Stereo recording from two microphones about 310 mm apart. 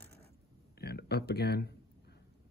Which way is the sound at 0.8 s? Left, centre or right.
Left.